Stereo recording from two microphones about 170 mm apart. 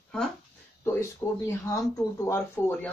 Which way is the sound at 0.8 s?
15° left (ahead or behind).